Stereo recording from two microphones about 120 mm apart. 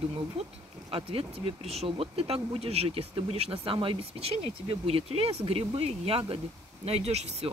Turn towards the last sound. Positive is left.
turn(degrees=-65)  # may be behind; listen again after turning